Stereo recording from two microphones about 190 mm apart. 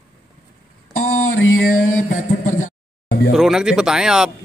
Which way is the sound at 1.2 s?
90° left.